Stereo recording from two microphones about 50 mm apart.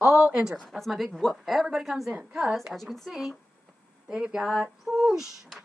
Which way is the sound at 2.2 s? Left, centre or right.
Centre.